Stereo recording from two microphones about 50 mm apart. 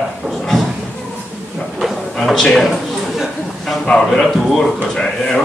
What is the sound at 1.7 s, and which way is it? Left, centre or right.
Drawer open or close, centre.